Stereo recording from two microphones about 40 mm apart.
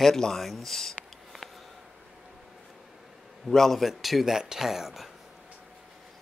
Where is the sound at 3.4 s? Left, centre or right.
Centre.